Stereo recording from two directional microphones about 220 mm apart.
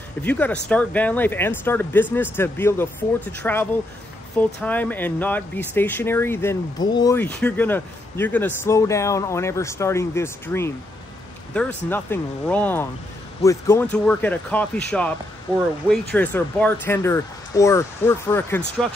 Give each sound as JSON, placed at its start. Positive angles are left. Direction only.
{"t": 0.2, "sound": "speech", "side_deg": 5}